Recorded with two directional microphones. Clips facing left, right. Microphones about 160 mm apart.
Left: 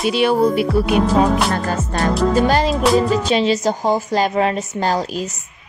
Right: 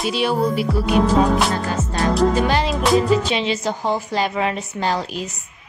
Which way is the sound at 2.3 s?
40° left (ahead or behind).